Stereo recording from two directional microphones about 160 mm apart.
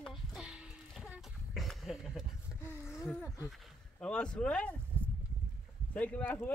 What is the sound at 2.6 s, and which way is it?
Speech, 15° left (ahead or behind).